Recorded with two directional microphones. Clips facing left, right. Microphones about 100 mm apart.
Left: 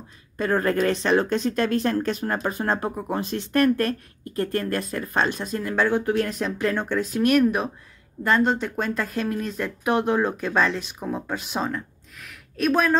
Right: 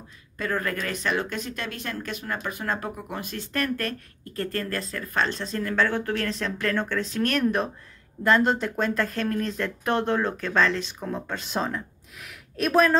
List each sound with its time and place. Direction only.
0.4 s speech: 30° left (ahead or behind); by 12.9 s centre (ahead or behind)